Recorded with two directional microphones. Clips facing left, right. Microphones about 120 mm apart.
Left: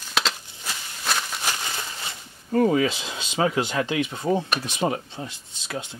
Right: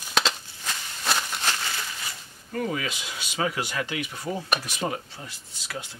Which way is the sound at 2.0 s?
30° left (ahead or behind).